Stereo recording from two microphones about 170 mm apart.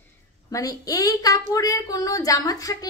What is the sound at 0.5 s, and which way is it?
Speech, 20° left (ahead or behind).